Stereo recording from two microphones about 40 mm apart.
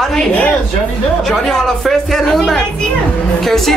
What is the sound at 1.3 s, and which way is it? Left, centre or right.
Speech, centre.